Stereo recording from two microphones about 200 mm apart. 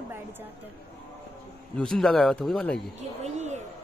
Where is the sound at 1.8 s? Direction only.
5° left (ahead or behind).